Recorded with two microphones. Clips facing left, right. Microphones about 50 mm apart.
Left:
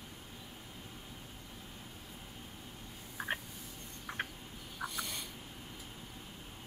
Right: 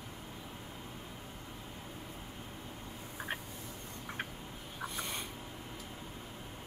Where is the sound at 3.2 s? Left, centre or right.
Centre.